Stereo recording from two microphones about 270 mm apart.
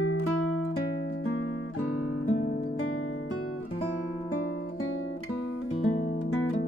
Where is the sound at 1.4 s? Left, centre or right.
Left.